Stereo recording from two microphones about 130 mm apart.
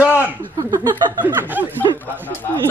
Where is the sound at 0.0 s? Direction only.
15° right (ahead or behind).